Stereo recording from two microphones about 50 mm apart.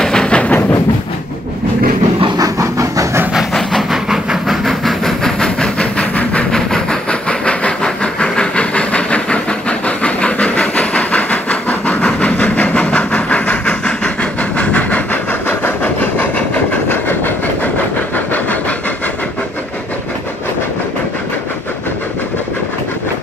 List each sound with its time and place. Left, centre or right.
0.0 s train: centre
2.6 s train: right
3.9 s train: centre; by 15.0 s left
15.4 s a sound: left
16.9 s train: left